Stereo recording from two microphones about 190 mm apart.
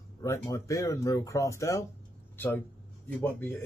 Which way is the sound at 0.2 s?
15° left (ahead or behind).